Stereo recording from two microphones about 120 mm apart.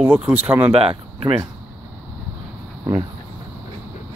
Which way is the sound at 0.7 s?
55° right (ahead or behind).